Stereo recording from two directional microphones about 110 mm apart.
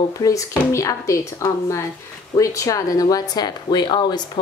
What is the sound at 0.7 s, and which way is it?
A woman's voice, 30° left (ahead or behind).